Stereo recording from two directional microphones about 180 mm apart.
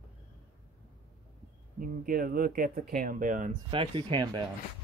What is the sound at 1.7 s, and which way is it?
Speech, 50° right (ahead or behind).